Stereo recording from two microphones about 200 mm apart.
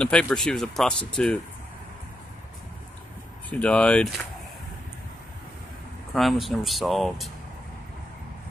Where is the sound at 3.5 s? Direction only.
5° left (ahead or behind).